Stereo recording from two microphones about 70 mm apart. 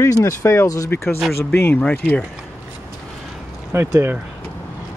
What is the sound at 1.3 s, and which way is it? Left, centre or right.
Speech, left.